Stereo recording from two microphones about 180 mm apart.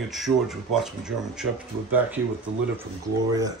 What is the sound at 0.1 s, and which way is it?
Speech, centre (ahead or behind).